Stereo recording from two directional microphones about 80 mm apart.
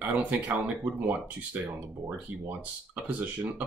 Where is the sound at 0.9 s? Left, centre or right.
Centre.